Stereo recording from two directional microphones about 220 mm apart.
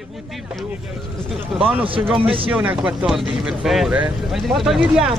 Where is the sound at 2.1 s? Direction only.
25° right (ahead or behind).